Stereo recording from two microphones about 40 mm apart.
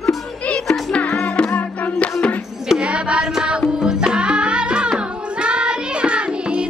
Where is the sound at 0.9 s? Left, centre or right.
Left.